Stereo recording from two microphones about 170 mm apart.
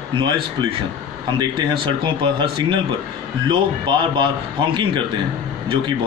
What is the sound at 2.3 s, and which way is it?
A man's voice, 30° right (ahead or behind).